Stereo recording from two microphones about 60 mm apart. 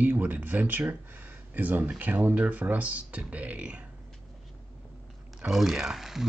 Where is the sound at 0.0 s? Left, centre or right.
Right.